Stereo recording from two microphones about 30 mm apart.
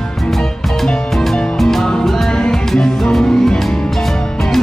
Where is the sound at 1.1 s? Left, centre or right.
Centre.